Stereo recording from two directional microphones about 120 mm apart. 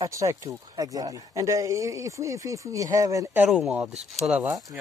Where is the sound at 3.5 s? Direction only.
5° right (ahead or behind).